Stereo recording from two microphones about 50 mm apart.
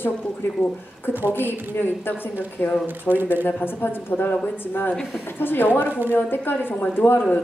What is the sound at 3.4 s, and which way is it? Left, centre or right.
A woman's voice, left.